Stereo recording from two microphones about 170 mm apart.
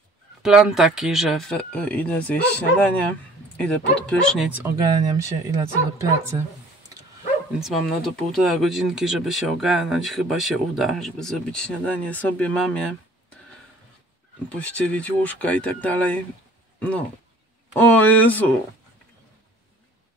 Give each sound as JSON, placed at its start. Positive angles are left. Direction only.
{"t": 0.4, "sound": "speech", "side_deg": -5}
{"t": 4.6, "sound": "speech", "side_deg": -20}
{"t": 7.6, "sound": "speech", "side_deg": 0}
{"t": 14.5, "sound": "speech", "side_deg": 10}
{"t": 17.7, "sound": "speech", "side_deg": 10}